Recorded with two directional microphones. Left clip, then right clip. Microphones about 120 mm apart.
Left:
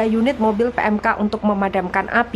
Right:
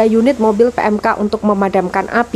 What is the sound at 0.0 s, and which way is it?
A woman's voice, 35° right (ahead or behind).